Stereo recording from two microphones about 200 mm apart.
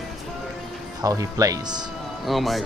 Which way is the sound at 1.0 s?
15° right (ahead or behind).